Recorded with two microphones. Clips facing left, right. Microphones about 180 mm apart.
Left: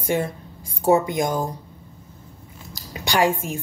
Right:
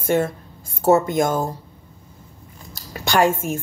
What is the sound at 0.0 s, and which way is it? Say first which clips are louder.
A woman's voice: right 4 dB; 15° left (ahead or behind).